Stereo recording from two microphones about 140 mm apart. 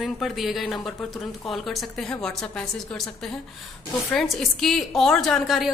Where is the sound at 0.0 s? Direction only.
Centre (ahead or behind).